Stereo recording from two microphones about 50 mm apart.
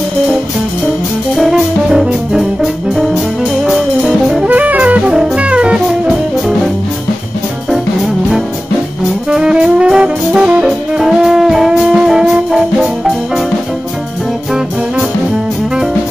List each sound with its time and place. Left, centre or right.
1.3 s music: centre
1.9 s brass instrument: centre
3.6 s music: centre
4.5 s music: right
9.3 s jazz: centre
11.0 s music: centre